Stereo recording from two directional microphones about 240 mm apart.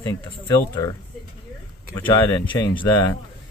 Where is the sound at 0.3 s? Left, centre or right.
Centre.